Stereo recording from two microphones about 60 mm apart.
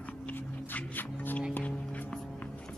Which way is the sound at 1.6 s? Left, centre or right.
Left.